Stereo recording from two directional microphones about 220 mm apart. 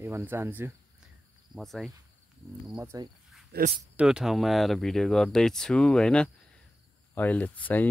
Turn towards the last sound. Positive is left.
turn(degrees=10)  # may be behind; listen again after turning